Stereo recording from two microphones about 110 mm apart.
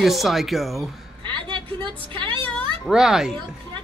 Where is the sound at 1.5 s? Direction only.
45° right (ahead or behind).